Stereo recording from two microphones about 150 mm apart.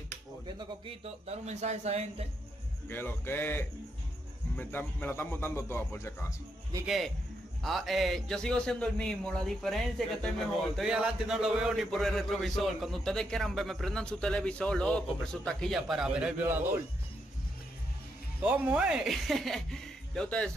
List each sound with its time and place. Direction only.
0.8 s speech: 45° right (ahead or behind)
2.9 s a man's voice: 15° left (ahead or behind)
7.6 s a man's voice: centre (ahead or behind)
18.4 s a man's voice: 10° right (ahead or behind)